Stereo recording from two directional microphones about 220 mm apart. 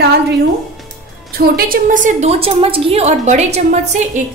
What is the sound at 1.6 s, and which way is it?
A woman's voice, 40° right (ahead or behind).